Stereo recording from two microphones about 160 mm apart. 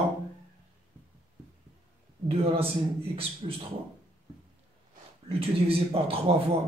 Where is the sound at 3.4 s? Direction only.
35° right (ahead or behind).